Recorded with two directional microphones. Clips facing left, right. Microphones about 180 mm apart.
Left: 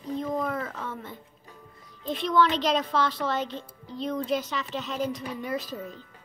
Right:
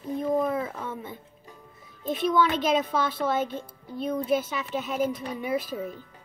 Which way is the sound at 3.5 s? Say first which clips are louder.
Right 2 dB; 50° right (ahead or behind).